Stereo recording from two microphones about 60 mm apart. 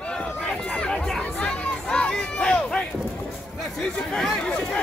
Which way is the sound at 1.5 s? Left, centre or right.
Centre.